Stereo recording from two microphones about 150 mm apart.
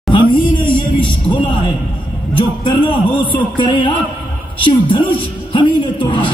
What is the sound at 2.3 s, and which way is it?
A man's voice, 35° left (ahead or behind).